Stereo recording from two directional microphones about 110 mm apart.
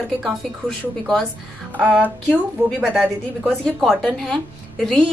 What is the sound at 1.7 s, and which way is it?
Music, 15° right (ahead or behind).